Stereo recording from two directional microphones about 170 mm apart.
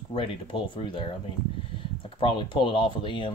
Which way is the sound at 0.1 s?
30° left (ahead or behind).